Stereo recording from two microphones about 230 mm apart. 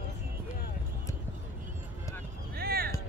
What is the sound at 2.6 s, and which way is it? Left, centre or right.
Music, right.